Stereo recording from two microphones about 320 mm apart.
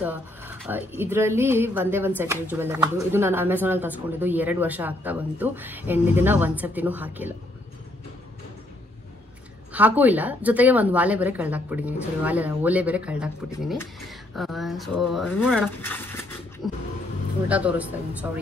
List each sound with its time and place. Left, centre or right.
0.0 s speech: centre
9.7 s speech: centre
17.5 s speech: centre